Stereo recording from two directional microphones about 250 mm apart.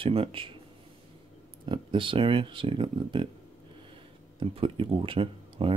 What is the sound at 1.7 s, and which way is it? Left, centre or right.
Speech, centre.